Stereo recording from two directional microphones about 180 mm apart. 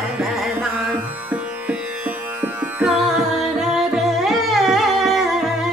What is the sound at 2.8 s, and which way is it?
Music, centre (ahead or behind).